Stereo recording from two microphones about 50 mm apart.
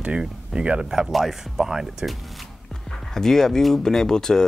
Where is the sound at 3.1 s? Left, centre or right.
Centre.